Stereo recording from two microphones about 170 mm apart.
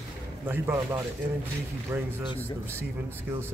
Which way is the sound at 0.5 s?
15° right (ahead or behind).